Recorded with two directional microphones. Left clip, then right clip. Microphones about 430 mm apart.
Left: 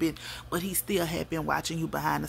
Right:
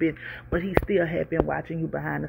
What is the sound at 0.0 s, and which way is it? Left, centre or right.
Speech, centre.